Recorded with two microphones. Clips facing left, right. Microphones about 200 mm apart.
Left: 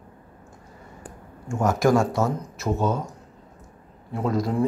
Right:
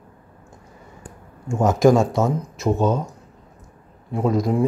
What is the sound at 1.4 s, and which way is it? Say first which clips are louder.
Speech: right 5 dB; 20° right (ahead or behind).